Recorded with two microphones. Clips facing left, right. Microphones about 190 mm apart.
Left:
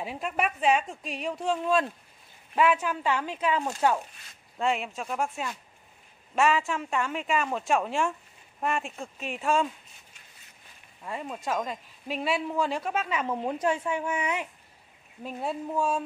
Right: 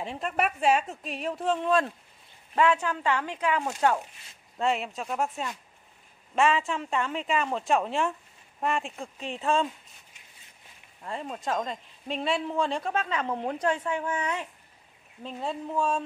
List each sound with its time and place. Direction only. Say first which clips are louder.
0.0 s a woman's voice: right 1 dB; 5° left (ahead or behind)
4.6 s a woman's voice: right 1 dB; centre (ahead or behind)
9.3 s speech: even; 25° right (ahead or behind)
11.3 s a woman's voice: even; 5° left (ahead or behind)